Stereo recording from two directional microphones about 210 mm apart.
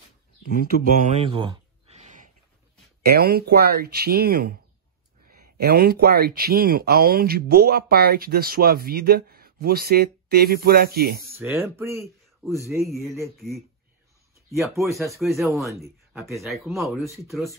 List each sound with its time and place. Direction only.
0.6 s speech: 30° right (ahead or behind)
3.2 s speech: 45° right (ahead or behind)
11.3 s speech: 10° right (ahead or behind)
12.8 s speech: centre (ahead or behind)
14.6 s speech: 15° right (ahead or behind)
15.0 s speech: centre (ahead or behind)
15.7 s speech: 15° right (ahead or behind)
16.3 s speech: centre (ahead or behind)